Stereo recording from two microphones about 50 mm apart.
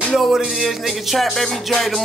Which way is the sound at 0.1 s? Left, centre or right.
Centre.